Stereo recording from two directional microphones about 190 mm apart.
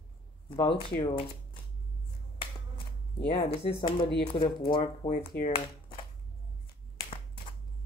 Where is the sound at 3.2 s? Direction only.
30° left (ahead or behind).